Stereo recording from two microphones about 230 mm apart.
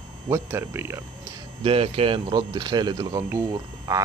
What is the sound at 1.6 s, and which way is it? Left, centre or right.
Speech, right.